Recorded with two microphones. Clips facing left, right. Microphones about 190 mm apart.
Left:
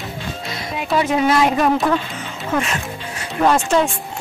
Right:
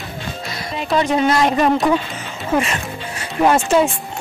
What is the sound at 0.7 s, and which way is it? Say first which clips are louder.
Speech: right 1 dB; 5° left (ahead or behind).